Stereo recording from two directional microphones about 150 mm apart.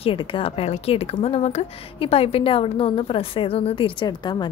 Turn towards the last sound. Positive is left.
turn(degrees=30)  # may be behind; listen again after turning